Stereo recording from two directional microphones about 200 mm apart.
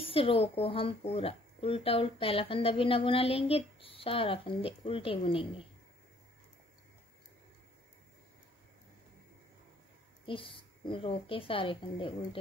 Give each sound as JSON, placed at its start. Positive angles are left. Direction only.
{"t": 0.1, "sound": "speech", "side_deg": 25}
{"t": 10.2, "sound": "speech", "side_deg": 25}